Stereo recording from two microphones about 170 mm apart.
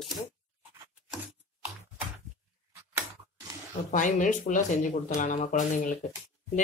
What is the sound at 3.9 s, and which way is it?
Speech, 50° left (ahead or behind).